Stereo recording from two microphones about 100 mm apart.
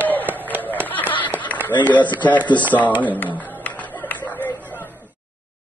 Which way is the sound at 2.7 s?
35° left (ahead or behind).